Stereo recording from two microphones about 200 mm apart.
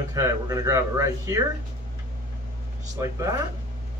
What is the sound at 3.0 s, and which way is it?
Speech, 15° right (ahead or behind).